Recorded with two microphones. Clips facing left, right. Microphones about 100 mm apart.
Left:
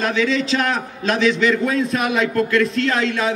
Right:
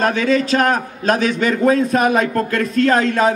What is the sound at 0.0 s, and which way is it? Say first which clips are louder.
A man's voice: right 3 dB; 50° right (ahead or behind).